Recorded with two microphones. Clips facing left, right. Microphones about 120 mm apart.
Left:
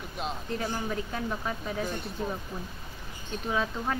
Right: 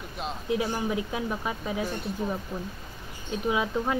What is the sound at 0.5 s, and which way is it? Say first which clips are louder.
Speech: right 7 dB; 10° right (ahead or behind).